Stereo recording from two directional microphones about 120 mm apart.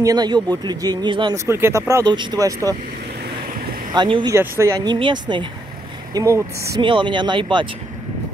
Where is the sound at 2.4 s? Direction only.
30° right (ahead or behind).